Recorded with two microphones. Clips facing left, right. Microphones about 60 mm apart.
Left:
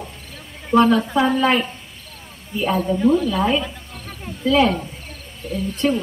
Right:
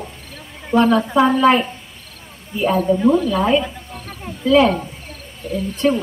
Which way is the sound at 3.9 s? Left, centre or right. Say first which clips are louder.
Right 2 dB; right.